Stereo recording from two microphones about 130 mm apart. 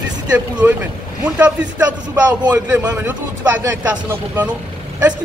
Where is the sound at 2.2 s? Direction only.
25° right (ahead or behind).